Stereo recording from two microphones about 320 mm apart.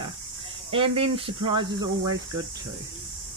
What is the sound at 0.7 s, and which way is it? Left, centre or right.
Speech, centre.